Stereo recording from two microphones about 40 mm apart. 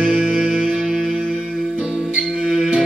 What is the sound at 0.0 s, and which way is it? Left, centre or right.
Music, centre.